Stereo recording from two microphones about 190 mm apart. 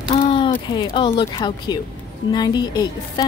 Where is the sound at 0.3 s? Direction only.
25° left (ahead or behind).